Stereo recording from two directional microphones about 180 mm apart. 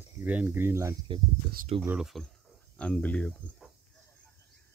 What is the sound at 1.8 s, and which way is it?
Speech, 5° right (ahead or behind).